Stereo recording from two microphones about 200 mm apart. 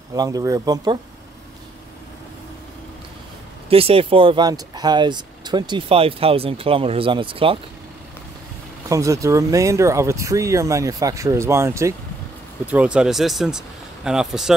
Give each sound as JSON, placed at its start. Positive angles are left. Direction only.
{"t": 0.1, "sound": "speech", "side_deg": -20}
{"t": 3.6, "sound": "speech", "side_deg": -30}
{"t": 8.8, "sound": "speech", "side_deg": -15}